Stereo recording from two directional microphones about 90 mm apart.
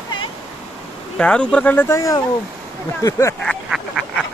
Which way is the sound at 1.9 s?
40° left (ahead or behind).